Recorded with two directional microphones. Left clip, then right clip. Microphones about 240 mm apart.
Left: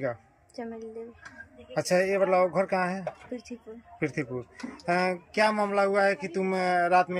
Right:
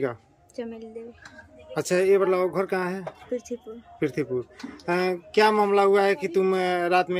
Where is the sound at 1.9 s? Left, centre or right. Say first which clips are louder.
Right 3 dB; centre.